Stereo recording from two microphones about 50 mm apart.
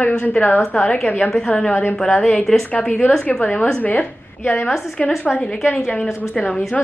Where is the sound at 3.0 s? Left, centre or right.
Left.